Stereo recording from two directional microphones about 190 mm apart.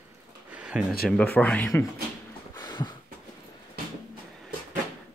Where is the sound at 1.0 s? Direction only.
5° left (ahead or behind).